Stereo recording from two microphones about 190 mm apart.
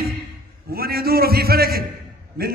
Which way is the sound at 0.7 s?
55° right (ahead or behind).